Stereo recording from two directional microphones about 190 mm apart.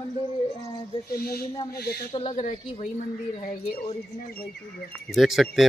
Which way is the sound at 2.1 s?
35° left (ahead or behind).